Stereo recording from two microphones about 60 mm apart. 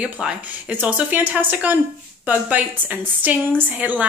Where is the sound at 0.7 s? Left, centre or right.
Right.